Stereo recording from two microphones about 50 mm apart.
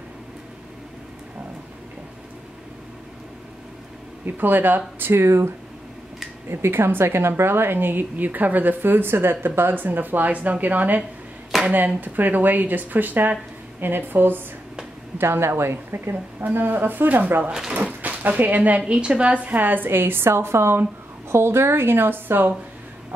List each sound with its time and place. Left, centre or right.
4.4 s a woman's voice: right
5.2 s speech: right
6.5 s a woman's voice: right
11.5 s clapping: centre
12.0 s a woman's voice: right
15.1 s a woman's voice: right
16.4 s a woman's voice: right
17.5 s speech: centre
18.0 s a sound: right
18.4 s a woman's voice: right